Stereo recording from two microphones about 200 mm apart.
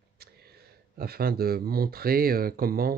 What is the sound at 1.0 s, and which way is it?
Speech, 50° right (ahead or behind).